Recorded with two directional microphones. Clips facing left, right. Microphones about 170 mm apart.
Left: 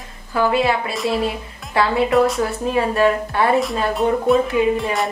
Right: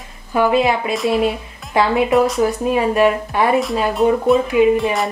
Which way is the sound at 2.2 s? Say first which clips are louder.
Even; centre (ahead or behind).